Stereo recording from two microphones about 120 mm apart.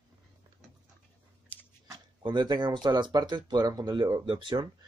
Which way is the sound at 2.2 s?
40° right (ahead or behind).